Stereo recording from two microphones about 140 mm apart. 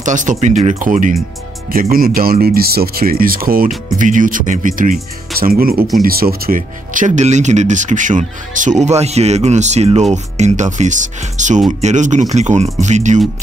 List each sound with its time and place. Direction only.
0.0 s speech: 65° right (ahead or behind)
1.7 s speech: 90° right
4.0 s speech: 70° right (ahead or behind)